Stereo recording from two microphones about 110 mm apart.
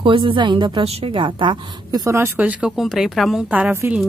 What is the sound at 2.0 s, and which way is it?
Speech, 25° right (ahead or behind).